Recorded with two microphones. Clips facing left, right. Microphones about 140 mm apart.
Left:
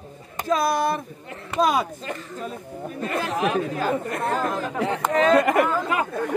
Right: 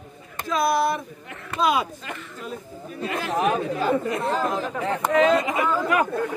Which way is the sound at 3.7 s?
50° left (ahead or behind).